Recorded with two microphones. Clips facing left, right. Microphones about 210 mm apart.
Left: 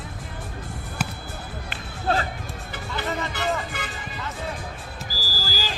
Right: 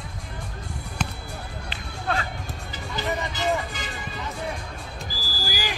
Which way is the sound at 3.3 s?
60° left (ahead or behind).